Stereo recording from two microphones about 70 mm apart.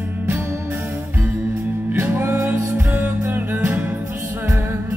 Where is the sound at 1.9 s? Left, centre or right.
Right.